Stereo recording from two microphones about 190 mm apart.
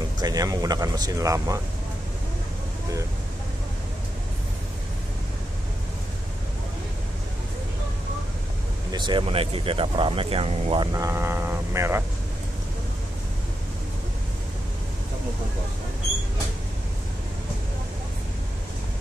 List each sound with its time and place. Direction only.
0.2 s speech: 20° right (ahead or behind)
8.9 s speech: 25° right (ahead or behind)